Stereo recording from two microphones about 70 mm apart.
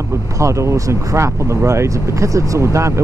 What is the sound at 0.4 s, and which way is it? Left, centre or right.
Speech, right.